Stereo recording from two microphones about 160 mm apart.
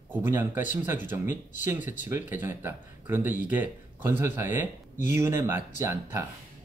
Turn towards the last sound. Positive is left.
turn(degrees=-15)  # may be behind; listen again after turning